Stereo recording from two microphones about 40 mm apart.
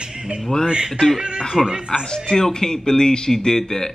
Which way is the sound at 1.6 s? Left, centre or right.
Centre.